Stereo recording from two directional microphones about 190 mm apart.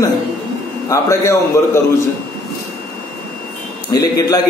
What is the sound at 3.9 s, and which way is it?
Speech, 20° left (ahead or behind).